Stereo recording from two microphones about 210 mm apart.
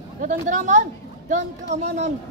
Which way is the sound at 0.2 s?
40° right (ahead or behind).